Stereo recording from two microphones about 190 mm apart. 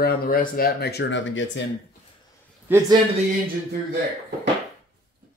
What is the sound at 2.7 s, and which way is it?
Speech, 10° right (ahead or behind).